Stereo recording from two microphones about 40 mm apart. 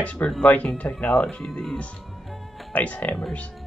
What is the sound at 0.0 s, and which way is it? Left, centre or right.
Speech, left.